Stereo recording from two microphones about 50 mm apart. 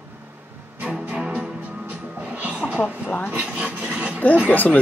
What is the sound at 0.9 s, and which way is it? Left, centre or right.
Music, right.